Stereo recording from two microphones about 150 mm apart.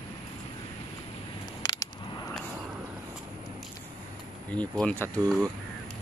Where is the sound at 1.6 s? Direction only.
30° left (ahead or behind).